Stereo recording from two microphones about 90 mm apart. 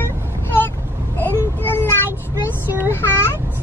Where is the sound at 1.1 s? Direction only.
25° left (ahead or behind).